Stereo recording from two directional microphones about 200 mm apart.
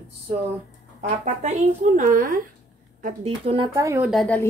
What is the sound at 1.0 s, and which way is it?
Speech, 35° right (ahead or behind).